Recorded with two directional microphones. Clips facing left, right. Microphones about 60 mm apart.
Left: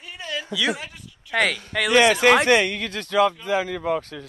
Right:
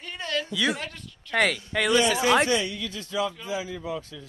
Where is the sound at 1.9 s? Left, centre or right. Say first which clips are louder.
Left 6 dB; left.